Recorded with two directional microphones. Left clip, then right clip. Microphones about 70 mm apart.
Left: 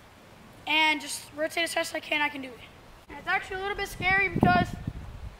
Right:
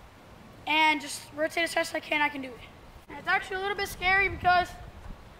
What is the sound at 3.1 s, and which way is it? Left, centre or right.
Speech, centre.